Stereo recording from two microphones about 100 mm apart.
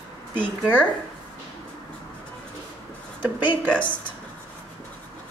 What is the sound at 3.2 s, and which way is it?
Speech, 15° right (ahead or behind).